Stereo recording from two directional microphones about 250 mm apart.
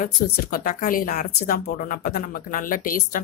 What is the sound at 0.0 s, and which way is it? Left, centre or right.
Speech, left.